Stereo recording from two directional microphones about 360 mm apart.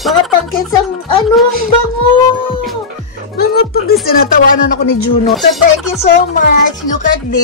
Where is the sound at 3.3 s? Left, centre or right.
Left.